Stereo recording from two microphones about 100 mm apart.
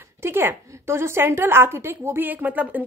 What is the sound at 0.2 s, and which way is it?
A woman's voice, 20° right (ahead or behind).